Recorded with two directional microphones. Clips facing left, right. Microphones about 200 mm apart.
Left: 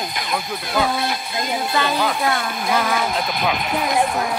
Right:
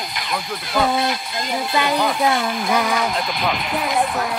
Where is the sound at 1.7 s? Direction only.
15° right (ahead or behind).